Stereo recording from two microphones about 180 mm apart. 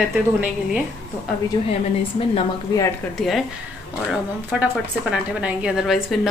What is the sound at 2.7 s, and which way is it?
Speech, 20° left (ahead or behind).